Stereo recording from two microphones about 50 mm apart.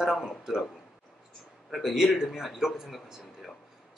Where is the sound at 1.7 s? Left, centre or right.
Centre.